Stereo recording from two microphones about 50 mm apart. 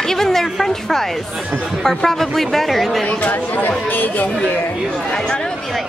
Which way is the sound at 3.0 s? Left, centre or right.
Left.